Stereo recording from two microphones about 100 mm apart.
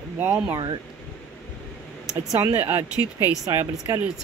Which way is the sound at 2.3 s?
25° right (ahead or behind).